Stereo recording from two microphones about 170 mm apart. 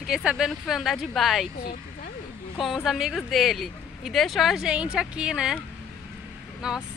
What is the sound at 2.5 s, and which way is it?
Speech, centre (ahead or behind).